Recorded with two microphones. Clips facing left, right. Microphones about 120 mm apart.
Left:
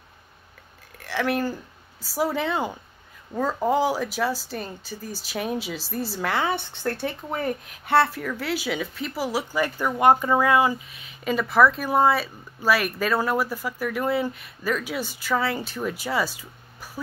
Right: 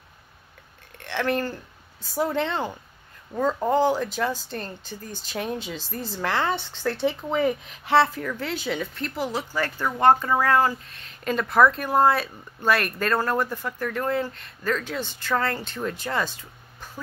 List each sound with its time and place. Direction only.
0.9 s speech: 5° left (ahead or behind)
7.2 s speech: 15° right (ahead or behind)
7.8 s speech: centre (ahead or behind)